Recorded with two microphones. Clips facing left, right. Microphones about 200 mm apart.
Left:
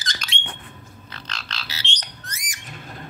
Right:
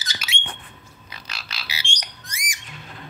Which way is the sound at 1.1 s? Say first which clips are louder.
Left 2 dB; 10° right (ahead or behind).